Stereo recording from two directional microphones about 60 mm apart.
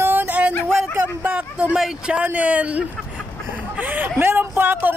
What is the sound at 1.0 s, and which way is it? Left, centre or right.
Speech, centre.